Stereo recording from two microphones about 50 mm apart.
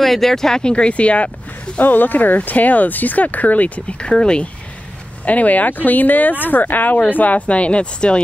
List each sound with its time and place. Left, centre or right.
0.0 s speech: centre; by 1.3 s left
1.8 s speech: left
4.1 s speech: centre
5.2 s speech: left